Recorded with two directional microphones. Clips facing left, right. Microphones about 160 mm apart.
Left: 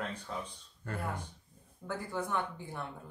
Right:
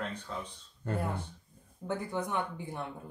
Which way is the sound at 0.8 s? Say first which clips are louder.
Right 4 dB; 20° right (ahead or behind).